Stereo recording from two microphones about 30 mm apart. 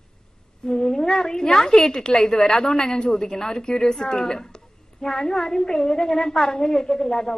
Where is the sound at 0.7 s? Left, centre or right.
Left.